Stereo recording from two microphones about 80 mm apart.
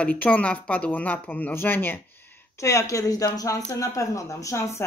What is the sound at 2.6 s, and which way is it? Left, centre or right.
Speech, left.